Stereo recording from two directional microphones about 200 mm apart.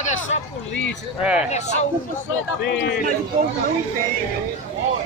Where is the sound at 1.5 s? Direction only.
35° left (ahead or behind).